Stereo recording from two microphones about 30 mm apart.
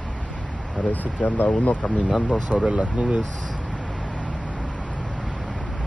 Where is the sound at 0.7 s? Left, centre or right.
Left.